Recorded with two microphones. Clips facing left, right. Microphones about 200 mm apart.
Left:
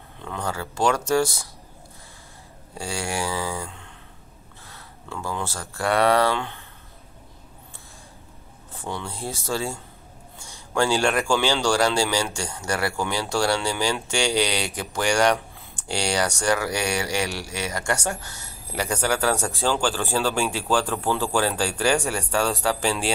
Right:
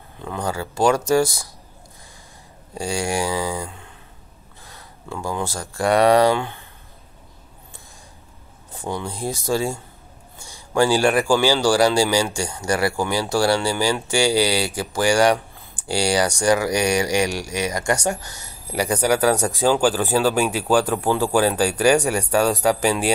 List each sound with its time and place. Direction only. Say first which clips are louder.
0.2 s a man's voice: right 4 dB; 10° right (ahead or behind)
2.8 s a man's voice: right 5 dB; 15° right (ahead or behind)
8.7 s a man's voice: right 4 dB; 15° right (ahead or behind)